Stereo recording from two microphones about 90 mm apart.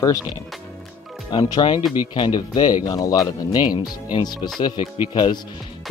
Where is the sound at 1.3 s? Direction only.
60° left (ahead or behind).